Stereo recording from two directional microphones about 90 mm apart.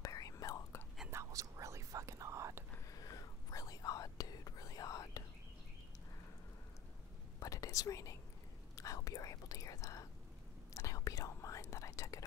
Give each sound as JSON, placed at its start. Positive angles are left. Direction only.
{"t": 0.0, "sound": "whispering", "side_deg": 40}
{"t": 1.1, "sound": "whispering", "side_deg": -35}
{"t": 2.9, "sound": "whispering", "side_deg": 40}
{"t": 7.3, "sound": "whispering", "side_deg": 40}
{"t": 8.7, "sound": "speech", "side_deg": 40}
{"t": 10.7, "sound": "whispering", "side_deg": 35}